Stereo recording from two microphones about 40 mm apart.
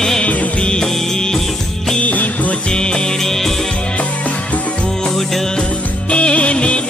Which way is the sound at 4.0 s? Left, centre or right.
Left.